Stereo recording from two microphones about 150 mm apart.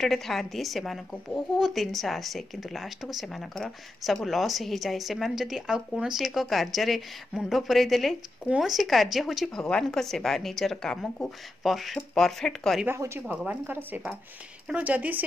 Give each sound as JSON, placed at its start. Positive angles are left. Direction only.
{"t": 0.0, "sound": "a woman's voice", "side_deg": 0}
{"t": 12.8, "sound": "speech", "side_deg": -15}